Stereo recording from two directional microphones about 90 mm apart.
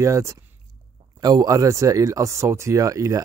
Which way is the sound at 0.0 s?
35° right (ahead or behind).